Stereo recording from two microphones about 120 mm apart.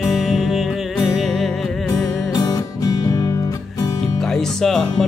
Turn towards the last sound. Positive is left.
turn(degrees=5)  # may be behind; listen again after turning